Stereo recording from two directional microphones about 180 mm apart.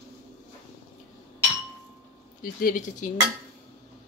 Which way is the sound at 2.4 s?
50° left (ahead or behind).